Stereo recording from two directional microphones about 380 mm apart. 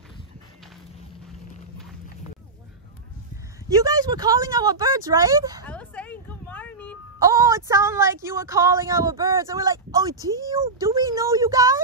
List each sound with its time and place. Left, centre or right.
3.6 s speech: centre
5.7 s a sound: centre
7.2 s a woman's voice: centre